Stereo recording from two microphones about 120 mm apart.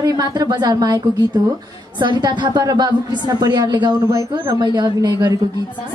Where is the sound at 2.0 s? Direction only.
40° right (ahead or behind).